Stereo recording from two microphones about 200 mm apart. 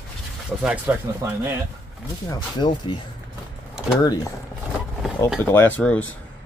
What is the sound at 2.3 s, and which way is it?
Speech, 20° left (ahead or behind).